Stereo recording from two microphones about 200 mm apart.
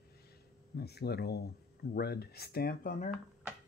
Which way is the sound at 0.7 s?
55° left (ahead or behind).